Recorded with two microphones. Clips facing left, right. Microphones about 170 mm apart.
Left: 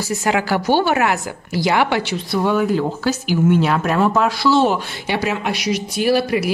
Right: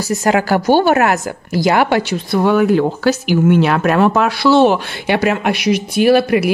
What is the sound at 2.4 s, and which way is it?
Speech, 65° right (ahead or behind).